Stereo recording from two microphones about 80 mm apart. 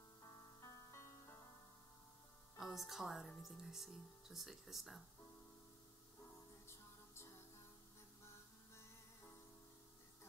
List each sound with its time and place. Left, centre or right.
0.6 s music: left
2.5 s a woman's voice: centre
8.7 s music: left